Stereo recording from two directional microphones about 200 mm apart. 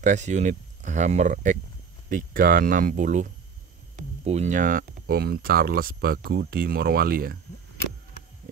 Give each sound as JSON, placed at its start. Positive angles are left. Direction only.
{"t": 0.0, "sound": "speech", "side_deg": -35}